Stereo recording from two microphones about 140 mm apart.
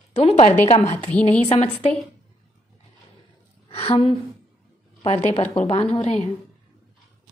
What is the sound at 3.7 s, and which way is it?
Speech, 45° left (ahead or behind).